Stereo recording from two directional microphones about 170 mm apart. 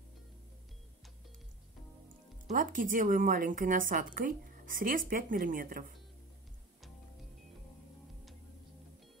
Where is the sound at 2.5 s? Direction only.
55° right (ahead or behind).